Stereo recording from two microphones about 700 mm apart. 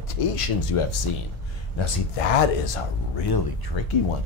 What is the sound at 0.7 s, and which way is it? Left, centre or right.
Speech, left.